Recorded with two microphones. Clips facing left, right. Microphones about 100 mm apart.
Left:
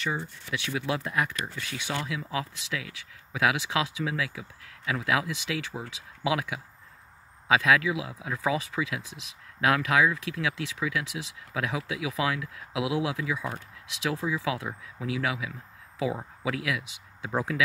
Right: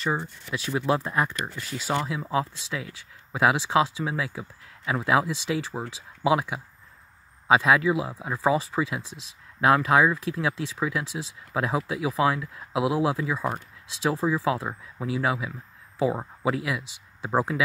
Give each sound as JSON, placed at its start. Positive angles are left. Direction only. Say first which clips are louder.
{"t": 0.0, "sound": "speech", "louder": "right 4 dB", "side_deg": -35}